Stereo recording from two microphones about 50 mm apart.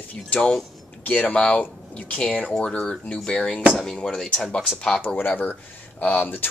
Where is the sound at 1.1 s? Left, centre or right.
Left; by 4.3 s centre.